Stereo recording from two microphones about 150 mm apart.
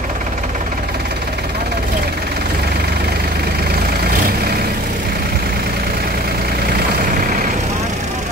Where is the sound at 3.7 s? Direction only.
90° right.